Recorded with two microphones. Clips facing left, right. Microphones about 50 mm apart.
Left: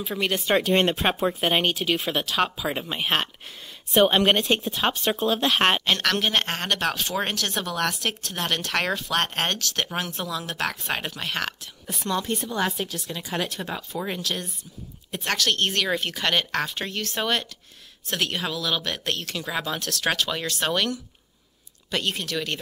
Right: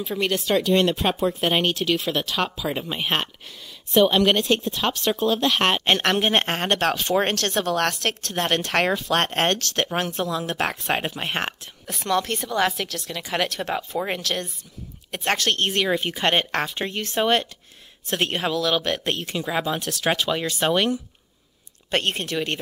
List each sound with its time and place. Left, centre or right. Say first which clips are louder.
0.0 s speech: right 2 dB; centre
0.7 s speech: right 1 dB; left
1.4 s speech: right 1 dB; centre
4.1 s speech: right 1 dB; left
6.0 s speech: right 3 dB; centre
6.3 s speech: right 3 dB; right
7.6 s speech: right 4 dB; right
12.0 s a woman's voice: right 3 dB; right
15.0 s speech: right 2 dB; right
15.7 s speech: right 3 dB; centre
16.3 s speech: right 2 dB; right
19.0 s speech: right 3 dB; right
21.9 s speech: right 3 dB; right